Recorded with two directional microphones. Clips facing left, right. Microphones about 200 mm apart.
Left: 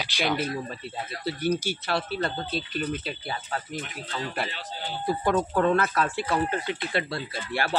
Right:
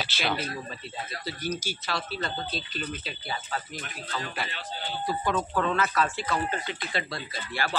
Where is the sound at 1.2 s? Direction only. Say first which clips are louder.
Left 7 dB; 60° left (ahead or behind).